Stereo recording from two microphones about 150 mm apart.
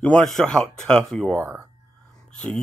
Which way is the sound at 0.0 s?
5° left (ahead or behind).